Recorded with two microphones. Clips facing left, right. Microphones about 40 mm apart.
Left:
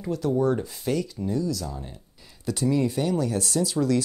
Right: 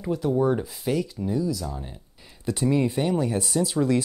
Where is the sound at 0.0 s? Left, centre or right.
Centre.